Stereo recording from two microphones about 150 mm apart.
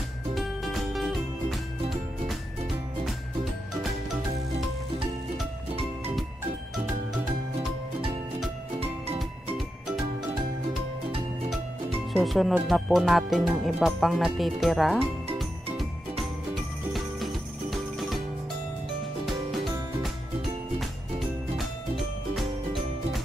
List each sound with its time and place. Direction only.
0.3 s music: centre (ahead or behind)
8.7 s music: 40° right (ahead or behind)
12.1 s speech: centre (ahead or behind)
16.9 s jingle bell: centre (ahead or behind)
19.2 s music: centre (ahead or behind)
21.5 s music: centre (ahead or behind)